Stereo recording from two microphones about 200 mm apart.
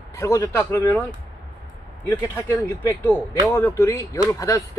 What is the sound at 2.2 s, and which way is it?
A man's voice, 10° left (ahead or behind).